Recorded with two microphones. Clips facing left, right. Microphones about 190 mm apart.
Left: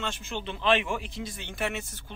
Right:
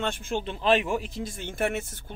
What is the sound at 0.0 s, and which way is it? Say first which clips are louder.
Speech: right 5 dB; 50° right (ahead or behind).